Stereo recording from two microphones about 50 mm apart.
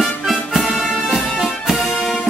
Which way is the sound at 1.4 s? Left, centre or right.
Centre.